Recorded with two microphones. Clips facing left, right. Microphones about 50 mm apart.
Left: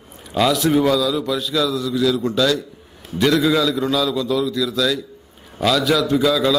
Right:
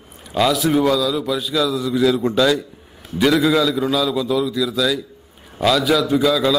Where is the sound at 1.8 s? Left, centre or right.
Centre.